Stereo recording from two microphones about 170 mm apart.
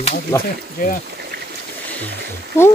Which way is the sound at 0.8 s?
60° left (ahead or behind).